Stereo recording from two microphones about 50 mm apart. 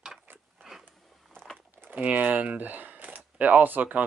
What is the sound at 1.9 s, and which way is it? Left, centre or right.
Speech, right.